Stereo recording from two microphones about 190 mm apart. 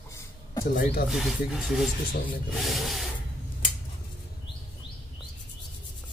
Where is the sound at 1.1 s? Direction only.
Centre (ahead or behind).